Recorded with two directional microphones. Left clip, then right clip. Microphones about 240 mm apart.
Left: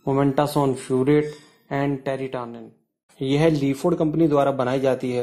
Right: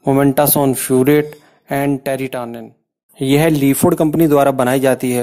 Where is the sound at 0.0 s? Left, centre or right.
Right.